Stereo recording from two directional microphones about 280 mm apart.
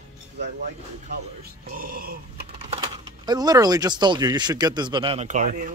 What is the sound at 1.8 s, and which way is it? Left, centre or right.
Speech, right.